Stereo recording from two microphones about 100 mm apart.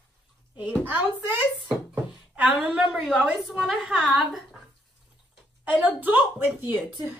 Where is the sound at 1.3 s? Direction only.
20° right (ahead or behind).